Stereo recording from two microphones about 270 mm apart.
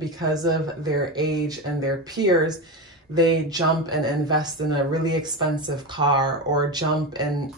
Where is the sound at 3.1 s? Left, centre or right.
Centre.